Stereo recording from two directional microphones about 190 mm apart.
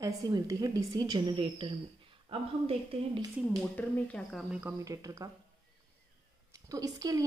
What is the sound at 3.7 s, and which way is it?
Speech, 5° left (ahead or behind).